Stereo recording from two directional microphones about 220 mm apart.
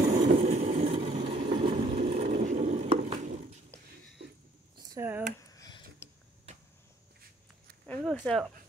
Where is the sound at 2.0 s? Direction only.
30° right (ahead or behind).